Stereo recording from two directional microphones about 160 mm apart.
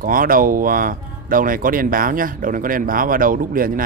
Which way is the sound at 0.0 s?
60° right (ahead or behind).